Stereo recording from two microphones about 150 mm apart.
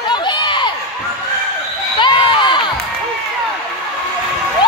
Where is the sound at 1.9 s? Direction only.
30° left (ahead or behind).